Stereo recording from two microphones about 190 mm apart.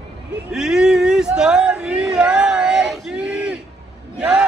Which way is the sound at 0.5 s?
5° right (ahead or behind).